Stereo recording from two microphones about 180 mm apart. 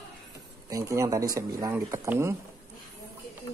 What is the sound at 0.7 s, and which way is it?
Speech, 15° right (ahead or behind).